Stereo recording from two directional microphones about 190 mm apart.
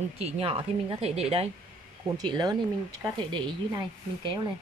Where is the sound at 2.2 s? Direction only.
20° right (ahead or behind).